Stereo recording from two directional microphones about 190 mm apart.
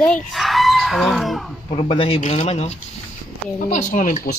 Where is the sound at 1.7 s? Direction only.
30° left (ahead or behind).